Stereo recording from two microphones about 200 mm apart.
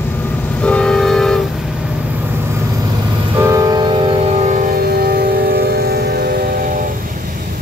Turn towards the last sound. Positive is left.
turn(degrees=-50)  # may be behind; listen again after turning